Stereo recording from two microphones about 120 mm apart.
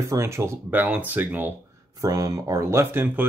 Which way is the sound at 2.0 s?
30° right (ahead or behind).